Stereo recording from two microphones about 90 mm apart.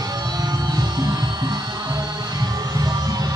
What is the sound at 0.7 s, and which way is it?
Music, 50° right (ahead or behind).